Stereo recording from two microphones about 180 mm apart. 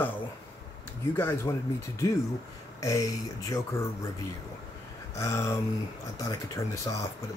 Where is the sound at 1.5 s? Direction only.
20° left (ahead or behind).